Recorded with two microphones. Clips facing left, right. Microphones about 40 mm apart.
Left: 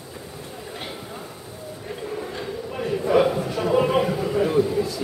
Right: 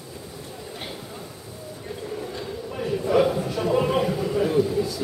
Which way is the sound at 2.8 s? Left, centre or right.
Centre.